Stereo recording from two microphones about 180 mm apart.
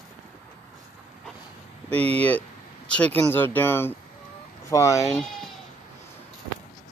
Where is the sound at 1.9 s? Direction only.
35° right (ahead or behind).